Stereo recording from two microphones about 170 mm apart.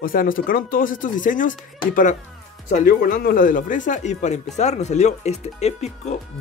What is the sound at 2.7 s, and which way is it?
Speech, 55° left (ahead or behind).